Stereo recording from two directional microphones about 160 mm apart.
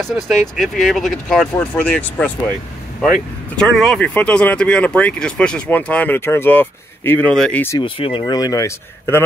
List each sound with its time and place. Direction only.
0.0 s speech: centre (ahead or behind)
3.5 s speech: centre (ahead or behind)
7.8 s speech: 35° left (ahead or behind); by 9.2 s 15° left (ahead or behind)